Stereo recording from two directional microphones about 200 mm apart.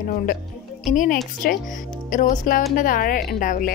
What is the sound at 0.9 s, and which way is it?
A woman's voice, 40° left (ahead or behind).